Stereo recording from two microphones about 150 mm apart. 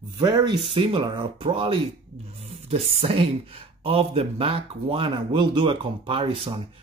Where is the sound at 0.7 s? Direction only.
35° right (ahead or behind).